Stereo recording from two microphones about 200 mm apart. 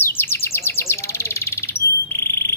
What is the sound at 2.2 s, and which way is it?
Insect, 15° left (ahead or behind).